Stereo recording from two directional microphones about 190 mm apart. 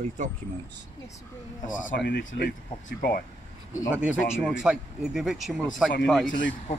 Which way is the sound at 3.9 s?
5° right (ahead or behind).